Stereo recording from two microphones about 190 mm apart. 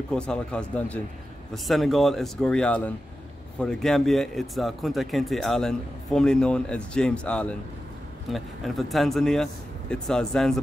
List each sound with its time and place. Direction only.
0.1 s speech: 5° left (ahead or behind)